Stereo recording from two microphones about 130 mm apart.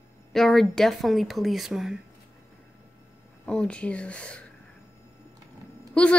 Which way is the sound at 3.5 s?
5° left (ahead or behind).